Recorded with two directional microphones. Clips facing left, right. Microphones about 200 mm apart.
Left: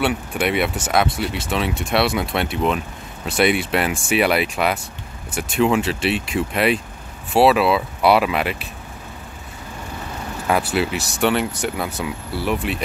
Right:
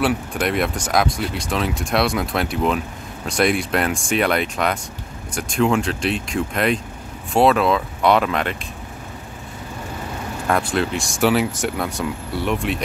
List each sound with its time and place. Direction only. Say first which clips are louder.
0.0 s speech: even; centre (ahead or behind)
10.4 s speech: left 1 dB; 5° left (ahead or behind)